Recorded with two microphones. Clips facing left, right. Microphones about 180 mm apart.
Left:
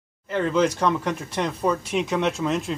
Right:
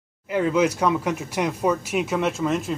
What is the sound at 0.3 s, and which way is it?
Speech, 10° right (ahead or behind).